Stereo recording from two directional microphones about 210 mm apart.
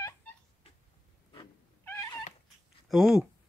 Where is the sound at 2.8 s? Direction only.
Centre (ahead or behind).